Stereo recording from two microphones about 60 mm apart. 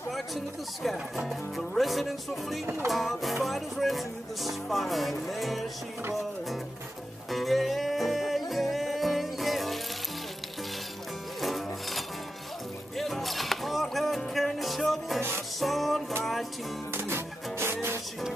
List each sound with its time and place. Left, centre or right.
0.8 s music: centre
7.2 s music: centre
11.4 s music: centre
16.9 s music: right